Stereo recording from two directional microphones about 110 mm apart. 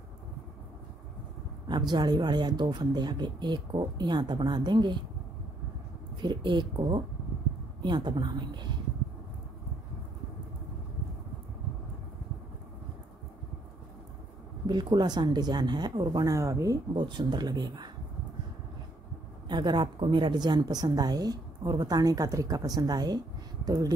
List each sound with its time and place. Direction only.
1.7 s a woman's voice: 40° right (ahead or behind)
6.2 s a woman's voice: 45° right (ahead or behind)
14.7 s a woman's voice: 40° right (ahead or behind)
16.9 s a woman's voice: 40° right (ahead or behind)
19.5 s a woman's voice: 45° right (ahead or behind)